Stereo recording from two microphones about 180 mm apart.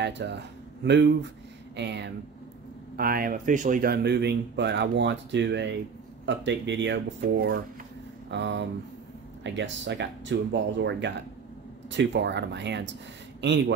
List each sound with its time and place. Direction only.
0.0 s speech: 70° right (ahead or behind)
3.0 s speech: 55° right (ahead or behind); by 5.8 s 75° right (ahead or behind)
6.2 s speech: 90° right
7.2 s speech: 55° right (ahead or behind)
8.3 s speech: 80° right